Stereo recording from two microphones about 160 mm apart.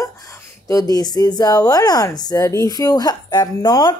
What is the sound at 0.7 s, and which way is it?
A woman's voice, 20° left (ahead or behind).